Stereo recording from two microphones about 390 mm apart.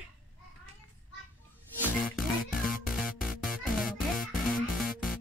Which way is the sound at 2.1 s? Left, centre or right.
Left.